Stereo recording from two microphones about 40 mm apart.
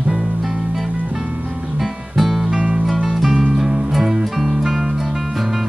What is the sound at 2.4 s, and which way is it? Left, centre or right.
Music, centre.